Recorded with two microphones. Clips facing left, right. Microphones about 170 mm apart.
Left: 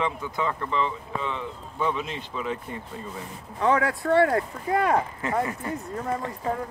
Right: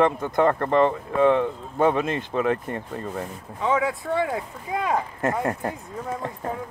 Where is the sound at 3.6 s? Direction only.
Centre (ahead or behind).